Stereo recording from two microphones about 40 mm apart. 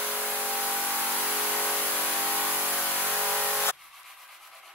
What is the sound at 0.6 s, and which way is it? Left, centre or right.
Vehicle, right.